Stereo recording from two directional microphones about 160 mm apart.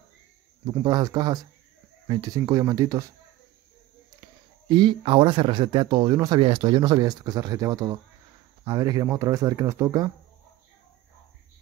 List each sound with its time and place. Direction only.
0.7 s speech: 25° right (ahead or behind)
4.6 s speech: 30° right (ahead or behind)